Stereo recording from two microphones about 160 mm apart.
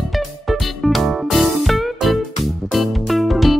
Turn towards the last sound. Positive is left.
turn(degrees=0)  # may be behind; listen again after turning